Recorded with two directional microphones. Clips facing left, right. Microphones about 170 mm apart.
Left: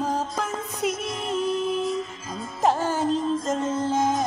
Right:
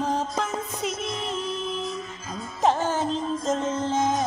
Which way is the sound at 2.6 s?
10° left (ahead or behind).